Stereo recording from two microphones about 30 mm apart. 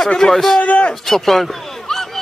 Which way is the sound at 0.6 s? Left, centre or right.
Left.